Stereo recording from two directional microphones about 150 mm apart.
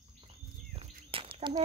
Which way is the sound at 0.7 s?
40° right (ahead or behind).